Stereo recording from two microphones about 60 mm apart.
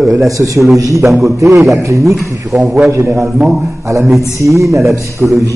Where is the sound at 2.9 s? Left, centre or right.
Right.